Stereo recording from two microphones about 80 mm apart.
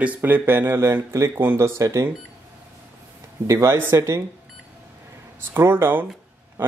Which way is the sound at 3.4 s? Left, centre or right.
Right.